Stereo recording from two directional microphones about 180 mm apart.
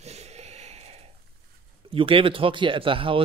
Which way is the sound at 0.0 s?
35° right (ahead or behind).